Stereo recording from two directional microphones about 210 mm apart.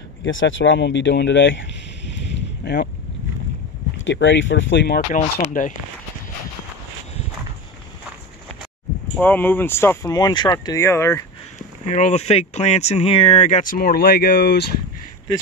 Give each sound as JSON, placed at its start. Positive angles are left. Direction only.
{"t": 0.2, "sound": "speech", "side_deg": 65}
{"t": 2.3, "sound": "boat", "side_deg": 50}
{"t": 4.0, "sound": "speech", "side_deg": 60}
{"t": 9.1, "sound": "speech", "side_deg": 10}
{"t": 11.9, "sound": "speech", "side_deg": 35}